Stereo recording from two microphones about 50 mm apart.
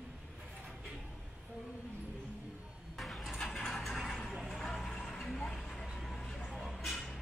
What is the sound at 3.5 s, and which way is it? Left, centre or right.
Vehicle, centre.